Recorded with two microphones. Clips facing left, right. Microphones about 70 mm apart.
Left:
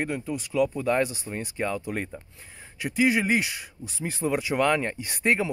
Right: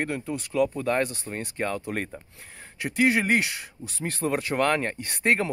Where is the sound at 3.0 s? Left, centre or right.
Centre.